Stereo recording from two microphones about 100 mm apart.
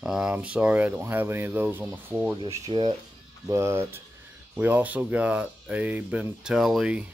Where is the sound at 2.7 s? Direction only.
60° right (ahead or behind).